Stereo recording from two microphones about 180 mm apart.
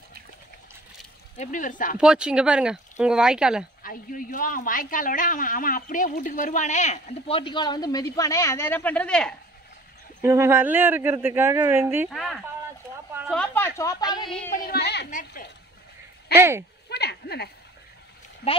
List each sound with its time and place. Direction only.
1.3 s speech: 40° left (ahead or behind)
2.0 s speech: 5° right (ahead or behind)
3.8 s speech: 50° left (ahead or behind); by 9.3 s 5° left (ahead or behind)
10.2 s speech: 15° right (ahead or behind)
12.1 s speech: centre (ahead or behind)
13.3 s a sound: 10° left (ahead or behind)
14.1 s speech: 25° left (ahead or behind)
14.5 s a sound: 55° left (ahead or behind)
15.0 s speech: 45° left (ahead or behind)
16.3 s speech: 15° right (ahead or behind)
16.9 s a sound: 65° left (ahead or behind)